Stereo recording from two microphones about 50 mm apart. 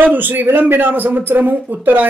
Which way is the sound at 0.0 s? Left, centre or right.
Right.